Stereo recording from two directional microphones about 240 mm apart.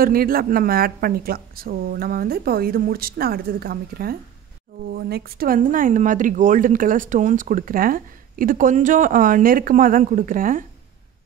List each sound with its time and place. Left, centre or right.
0.0 s speech: right